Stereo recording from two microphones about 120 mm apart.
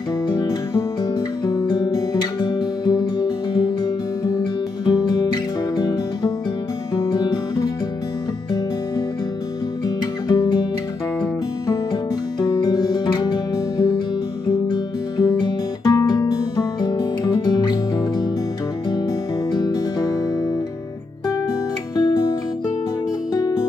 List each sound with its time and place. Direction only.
0.3 s music: 40° left (ahead or behind)
1.4 s guitar: 35° left (ahead or behind)
4.8 s music: 35° left (ahead or behind)
9.8 s music: 30° left (ahead or behind)
11.9 s music: 40° left (ahead or behind)
19.5 s music: 35° left (ahead or behind)
21.9 s music: 35° left (ahead or behind)
23.3 s music: 35° left (ahead or behind)